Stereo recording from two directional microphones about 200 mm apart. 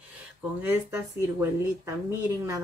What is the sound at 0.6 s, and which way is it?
Speech, 10° right (ahead or behind).